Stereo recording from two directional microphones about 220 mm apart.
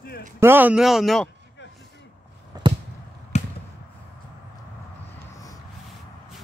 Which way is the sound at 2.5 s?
15° right (ahead or behind).